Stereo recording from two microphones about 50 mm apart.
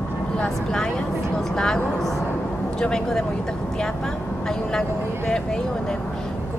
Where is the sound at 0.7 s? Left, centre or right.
Centre.